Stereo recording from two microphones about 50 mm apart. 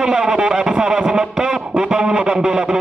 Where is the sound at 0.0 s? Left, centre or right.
Centre.